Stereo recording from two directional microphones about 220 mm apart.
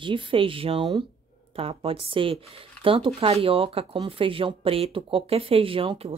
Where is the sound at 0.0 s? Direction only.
25° right (ahead or behind).